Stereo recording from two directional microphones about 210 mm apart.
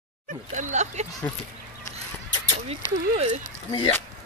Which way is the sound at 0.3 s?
35° right (ahead or behind).